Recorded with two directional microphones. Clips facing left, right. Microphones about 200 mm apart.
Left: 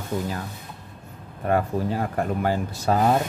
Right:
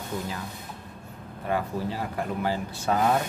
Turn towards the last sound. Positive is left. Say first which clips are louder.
# left 3 dB
turn(degrees=30)  # may be behind; listen again after turning